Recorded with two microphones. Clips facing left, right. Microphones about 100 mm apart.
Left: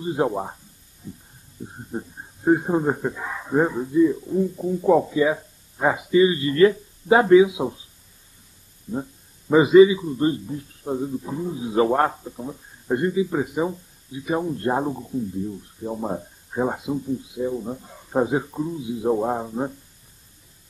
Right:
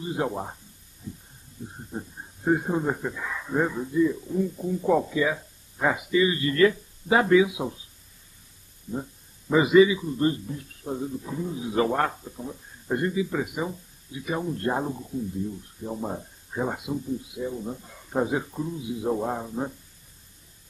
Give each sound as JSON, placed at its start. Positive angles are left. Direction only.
{"t": 0.0, "sound": "a man's voice", "side_deg": 30}
{"t": 1.9, "sound": "a man's voice", "side_deg": 25}
{"t": 9.5, "sound": "a man's voice", "side_deg": 25}